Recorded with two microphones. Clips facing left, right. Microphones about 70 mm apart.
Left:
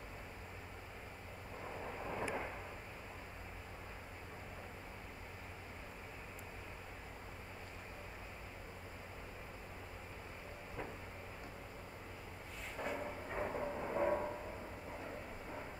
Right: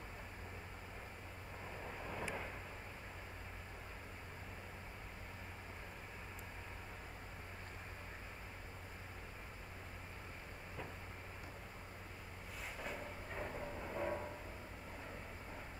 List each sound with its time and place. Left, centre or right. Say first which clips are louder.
1.9 s vehicle: left 4 dB; centre
12.7 s vehicle: left 6 dB; centre
13.0 s train: left 5 dB; centre